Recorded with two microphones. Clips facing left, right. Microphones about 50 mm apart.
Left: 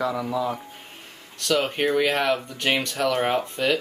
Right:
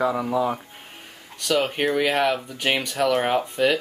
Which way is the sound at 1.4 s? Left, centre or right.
Centre.